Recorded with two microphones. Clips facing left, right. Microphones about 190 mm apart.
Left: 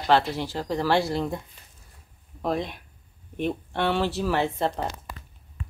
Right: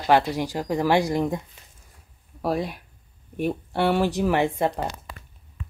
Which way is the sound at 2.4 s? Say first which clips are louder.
Right 2 dB; 5° right (ahead or behind).